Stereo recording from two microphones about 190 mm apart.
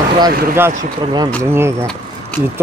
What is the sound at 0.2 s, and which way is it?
Speech, 20° right (ahead or behind).